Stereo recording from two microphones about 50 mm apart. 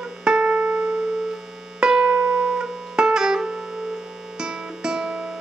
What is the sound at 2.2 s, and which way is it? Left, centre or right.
Music, right.